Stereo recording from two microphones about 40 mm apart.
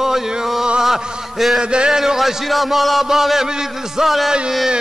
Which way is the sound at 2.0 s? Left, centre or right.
Centre.